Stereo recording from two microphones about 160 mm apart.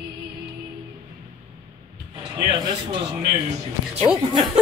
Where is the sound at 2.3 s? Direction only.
25° right (ahead or behind).